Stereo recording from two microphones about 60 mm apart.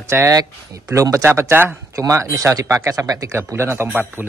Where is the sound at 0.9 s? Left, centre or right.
Right.